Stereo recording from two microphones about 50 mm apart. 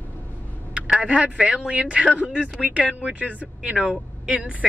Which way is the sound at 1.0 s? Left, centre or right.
Right.